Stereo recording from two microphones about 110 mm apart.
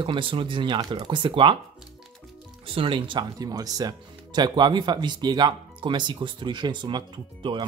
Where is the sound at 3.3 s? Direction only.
35° right (ahead or behind).